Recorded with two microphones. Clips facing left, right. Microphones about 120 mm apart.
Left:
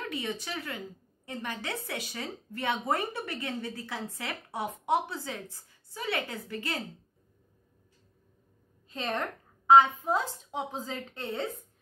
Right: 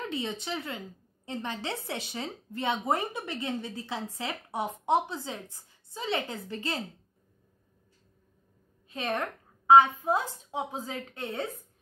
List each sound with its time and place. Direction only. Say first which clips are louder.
0.1 s a woman's voice: right 2 dB; 25° right (ahead or behind)
8.9 s speech: right 1 dB; 10° right (ahead or behind)